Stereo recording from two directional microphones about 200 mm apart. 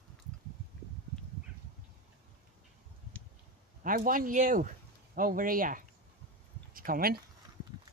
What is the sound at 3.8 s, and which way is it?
Speech, 45° right (ahead or behind).